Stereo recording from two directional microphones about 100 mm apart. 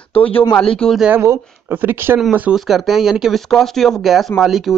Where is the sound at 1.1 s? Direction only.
20° right (ahead or behind).